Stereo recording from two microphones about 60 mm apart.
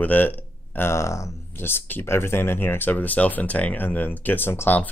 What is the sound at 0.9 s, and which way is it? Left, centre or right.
Speech, left.